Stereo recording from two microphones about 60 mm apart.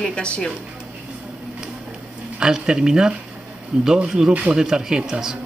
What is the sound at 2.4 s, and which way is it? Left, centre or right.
A man's voice, centre.